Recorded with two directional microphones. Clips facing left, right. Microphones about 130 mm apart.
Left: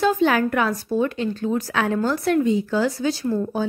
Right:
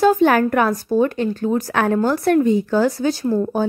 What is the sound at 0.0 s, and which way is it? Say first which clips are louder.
Speech: right 4 dB; 45° right (ahead or behind).